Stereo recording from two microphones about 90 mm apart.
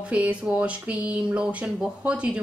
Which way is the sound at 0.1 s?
15° right (ahead or behind).